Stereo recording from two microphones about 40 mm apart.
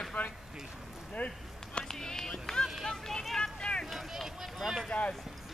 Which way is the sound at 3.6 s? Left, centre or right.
Left.